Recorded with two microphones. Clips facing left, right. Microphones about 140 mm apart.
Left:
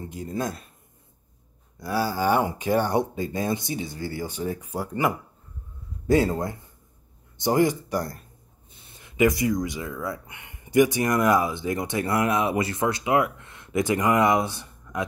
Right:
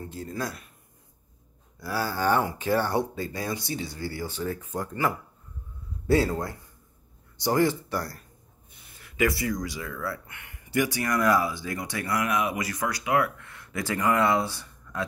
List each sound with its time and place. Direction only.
0.0 s speech: 20° left (ahead or behind)
1.8 s speech: 15° left (ahead or behind)